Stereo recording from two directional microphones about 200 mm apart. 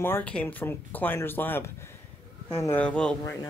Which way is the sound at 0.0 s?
10° left (ahead or behind).